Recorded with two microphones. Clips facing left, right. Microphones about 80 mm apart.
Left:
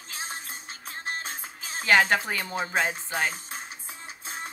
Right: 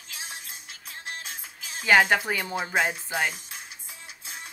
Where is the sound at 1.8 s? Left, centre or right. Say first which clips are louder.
Right 1 dB; centre.